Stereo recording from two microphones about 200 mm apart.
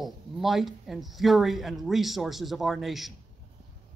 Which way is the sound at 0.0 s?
Centre (ahead or behind).